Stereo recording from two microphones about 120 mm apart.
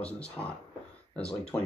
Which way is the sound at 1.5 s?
25° left (ahead or behind).